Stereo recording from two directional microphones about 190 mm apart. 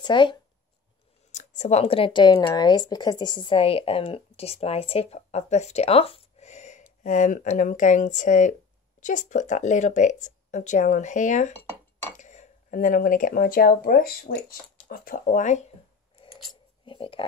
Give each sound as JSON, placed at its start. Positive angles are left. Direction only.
{"t": 0.0, "sound": "speech", "side_deg": 25}
{"t": 1.3, "sound": "speech", "side_deg": 40}
{"t": 16.8, "sound": "a sound", "side_deg": 30}